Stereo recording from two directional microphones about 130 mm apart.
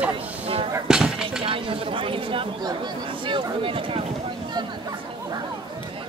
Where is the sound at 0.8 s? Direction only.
5° right (ahead or behind).